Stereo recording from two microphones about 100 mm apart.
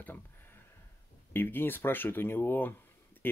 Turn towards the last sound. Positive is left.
turn(degrees=20)  # may be behind; listen again after turning